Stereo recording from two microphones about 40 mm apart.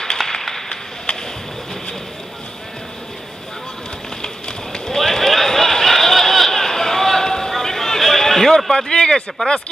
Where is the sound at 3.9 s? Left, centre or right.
Centre.